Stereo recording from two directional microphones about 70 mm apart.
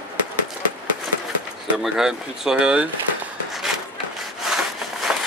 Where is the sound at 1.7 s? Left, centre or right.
Centre.